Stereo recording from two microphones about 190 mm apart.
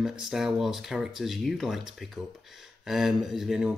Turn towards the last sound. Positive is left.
turn(degrees=-5)  # may be behind; listen again after turning